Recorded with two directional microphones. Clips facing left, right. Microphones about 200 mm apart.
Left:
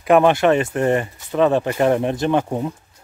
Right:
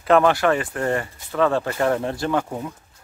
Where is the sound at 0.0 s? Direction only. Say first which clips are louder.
Left 3 dB; 15° left (ahead or behind).